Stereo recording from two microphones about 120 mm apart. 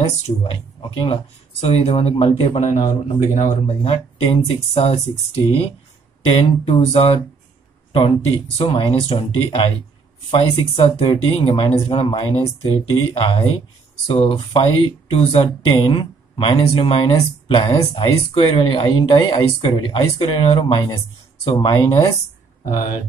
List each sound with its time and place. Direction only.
0.4 s speech: 45° left (ahead or behind)